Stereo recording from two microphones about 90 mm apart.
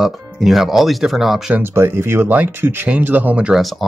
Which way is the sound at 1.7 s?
25° right (ahead or behind).